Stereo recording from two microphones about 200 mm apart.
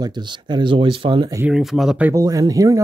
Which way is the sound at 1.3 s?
5° right (ahead or behind).